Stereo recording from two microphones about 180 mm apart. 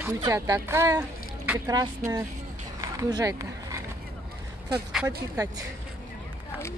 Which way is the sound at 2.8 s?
20° right (ahead or behind).